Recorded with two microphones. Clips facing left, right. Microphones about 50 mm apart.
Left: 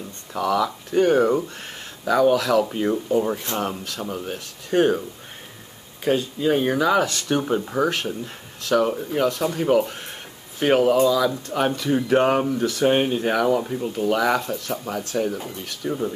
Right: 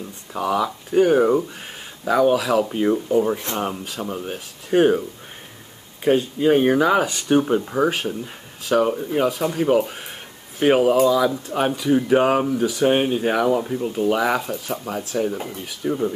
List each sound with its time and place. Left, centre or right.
0.4 s speech: right
0.9 s speech: centre
4.1 s speech: centre
6.0 s speech: right; by 8.2 s centre
8.6 s speech: centre
13.3 s speech: centre
13.6 s speech: centre